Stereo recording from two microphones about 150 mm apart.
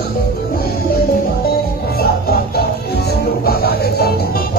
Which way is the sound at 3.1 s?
90° left.